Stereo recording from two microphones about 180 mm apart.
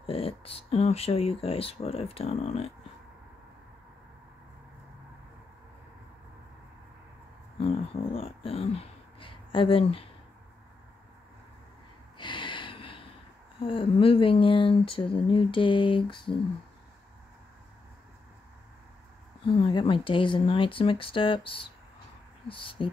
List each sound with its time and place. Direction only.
0.0 s speech: 30° left (ahead or behind)
7.5 s speech: 30° left (ahead or behind)
12.2 s gasp: 25° left (ahead or behind)
13.6 s speech: 30° left (ahead or behind)
19.4 s speech: 30° left (ahead or behind)